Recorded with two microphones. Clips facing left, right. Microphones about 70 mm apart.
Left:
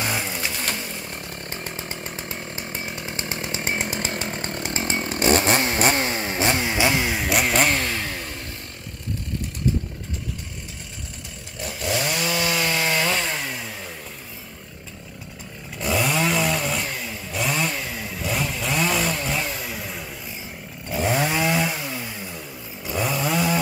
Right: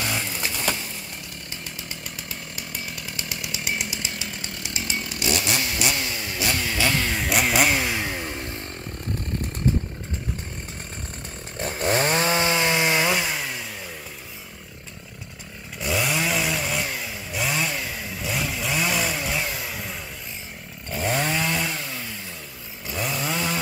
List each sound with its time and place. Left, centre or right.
1.5 s chainsaw: left; by 7.2 s centre
7.2 s chainsaw: centre
11.6 s chainsaw: right; by 13.7 s centre
15.8 s chainsaw: centre